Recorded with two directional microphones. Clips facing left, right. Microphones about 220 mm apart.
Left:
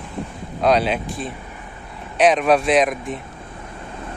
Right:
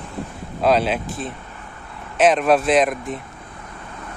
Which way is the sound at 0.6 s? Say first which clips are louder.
Even; centre (ahead or behind).